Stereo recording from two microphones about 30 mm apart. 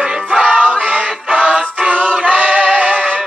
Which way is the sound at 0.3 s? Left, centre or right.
Right.